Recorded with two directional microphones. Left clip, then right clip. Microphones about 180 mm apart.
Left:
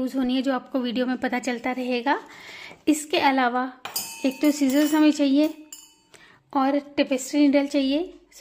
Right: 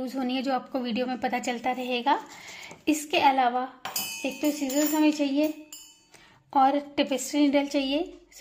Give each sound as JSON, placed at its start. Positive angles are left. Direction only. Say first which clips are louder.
{"t": 0.0, "sound": "a woman's voice", "louder": "left 4 dB", "side_deg": 20}
{"t": 4.2, "sound": "speech", "louder": "left 7 dB", "side_deg": 45}
{"t": 6.5, "sound": "a woman's voice", "louder": "right 1 dB", "side_deg": 20}